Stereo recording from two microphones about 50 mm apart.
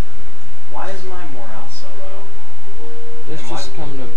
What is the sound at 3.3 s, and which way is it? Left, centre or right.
Speech, right.